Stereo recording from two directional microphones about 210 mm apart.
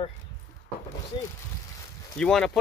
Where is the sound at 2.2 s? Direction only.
5° left (ahead or behind).